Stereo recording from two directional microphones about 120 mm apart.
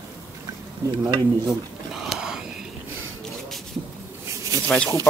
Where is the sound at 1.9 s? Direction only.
5° right (ahead or behind).